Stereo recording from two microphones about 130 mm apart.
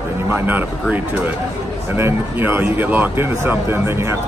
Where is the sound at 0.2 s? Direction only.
15° right (ahead or behind).